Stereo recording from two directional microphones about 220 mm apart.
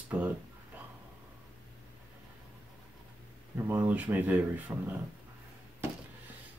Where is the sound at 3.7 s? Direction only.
10° right (ahead or behind).